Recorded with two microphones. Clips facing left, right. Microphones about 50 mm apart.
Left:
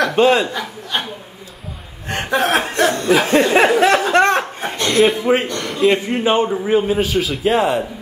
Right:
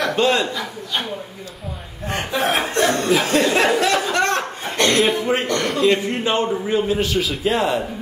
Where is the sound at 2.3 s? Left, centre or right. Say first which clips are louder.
Left 4 dB; left.